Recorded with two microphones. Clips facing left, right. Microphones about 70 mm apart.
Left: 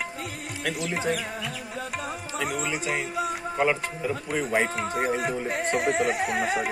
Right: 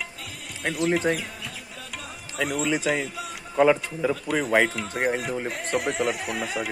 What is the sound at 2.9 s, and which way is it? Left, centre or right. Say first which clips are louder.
Speech: left 2 dB; left.